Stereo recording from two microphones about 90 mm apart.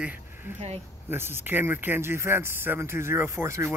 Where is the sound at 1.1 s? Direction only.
25° right (ahead or behind).